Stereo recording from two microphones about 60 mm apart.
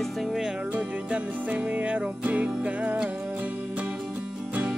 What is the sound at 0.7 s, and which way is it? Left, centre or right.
Music, right.